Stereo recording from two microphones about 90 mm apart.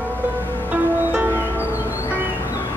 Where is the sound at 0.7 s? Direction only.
20° right (ahead or behind).